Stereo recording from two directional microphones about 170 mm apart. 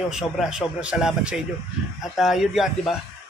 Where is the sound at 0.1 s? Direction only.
5° right (ahead or behind).